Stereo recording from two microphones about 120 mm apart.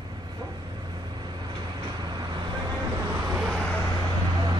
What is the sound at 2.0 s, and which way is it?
Vehicle, 35° right (ahead or behind).